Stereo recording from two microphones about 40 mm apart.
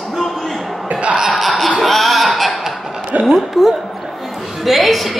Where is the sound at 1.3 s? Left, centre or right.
Centre.